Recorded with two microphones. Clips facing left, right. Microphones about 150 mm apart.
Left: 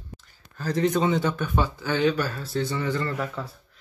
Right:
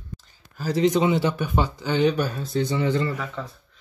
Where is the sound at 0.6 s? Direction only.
10° right (ahead or behind).